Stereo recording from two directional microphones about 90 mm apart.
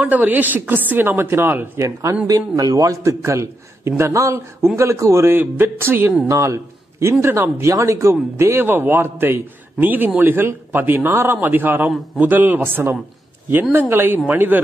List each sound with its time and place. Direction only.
0.0 s a man's voice: 15° right (ahead or behind)
1.8 s a man's voice: 35° right (ahead or behind)
6.2 s a man's voice: 35° right (ahead or behind)